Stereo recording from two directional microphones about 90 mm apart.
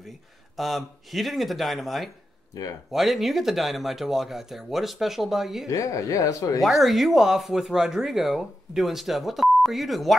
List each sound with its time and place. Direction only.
0.6 s speech: centre (ahead or behind)
5.7 s speech: 40° left (ahead or behind)
6.6 s speech: centre (ahead or behind)